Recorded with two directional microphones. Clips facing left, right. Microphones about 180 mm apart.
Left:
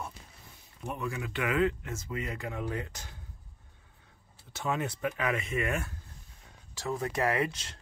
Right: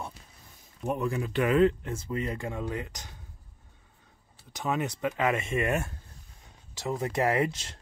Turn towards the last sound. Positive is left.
turn(degrees=-25)  # may be behind; listen again after turning